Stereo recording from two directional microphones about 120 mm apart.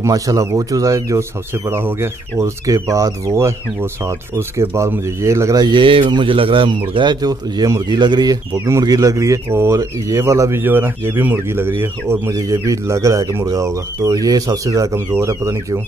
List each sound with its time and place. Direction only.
0.0 s speech: 25° right (ahead or behind)
5.6 s speech: 40° right (ahead or behind); by 15.8 s 25° right (ahead or behind)